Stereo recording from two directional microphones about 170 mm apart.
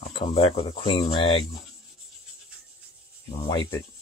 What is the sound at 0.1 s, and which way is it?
Speech, 30° left (ahead or behind).